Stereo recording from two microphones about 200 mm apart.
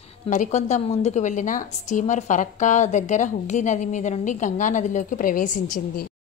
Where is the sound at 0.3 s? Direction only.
35° left (ahead or behind).